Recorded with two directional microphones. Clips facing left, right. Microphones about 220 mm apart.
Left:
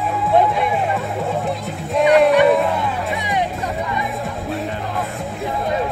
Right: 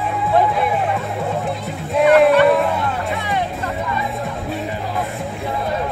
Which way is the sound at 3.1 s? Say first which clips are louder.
Left 1 dB; 15° left (ahead or behind).